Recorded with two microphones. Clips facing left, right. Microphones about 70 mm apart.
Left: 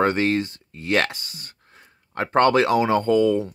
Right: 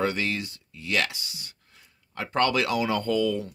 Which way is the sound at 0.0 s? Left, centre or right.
Left.